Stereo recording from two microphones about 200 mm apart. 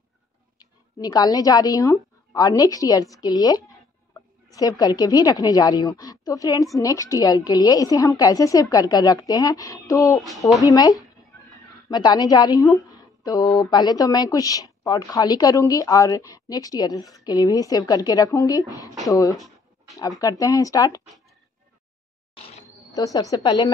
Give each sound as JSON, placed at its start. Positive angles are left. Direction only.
{"t": 0.6, "sound": "a woman's voice", "side_deg": 20}
{"t": 22.9, "sound": "a woman's voice", "side_deg": 15}